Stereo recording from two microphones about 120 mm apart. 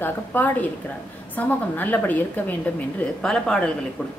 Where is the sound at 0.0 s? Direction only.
15° left (ahead or behind).